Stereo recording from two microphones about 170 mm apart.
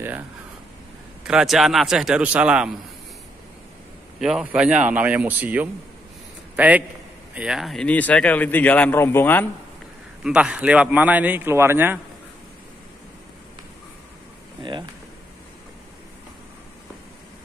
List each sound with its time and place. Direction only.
1.2 s a man's voice: 5° right (ahead or behind)
4.2 s a man's voice: 5° right (ahead or behind)
10.2 s a man's voice: 5° right (ahead or behind)
14.6 s speech: 30° right (ahead or behind)